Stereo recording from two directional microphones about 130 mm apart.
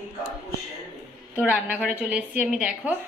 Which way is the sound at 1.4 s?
10° right (ahead or behind).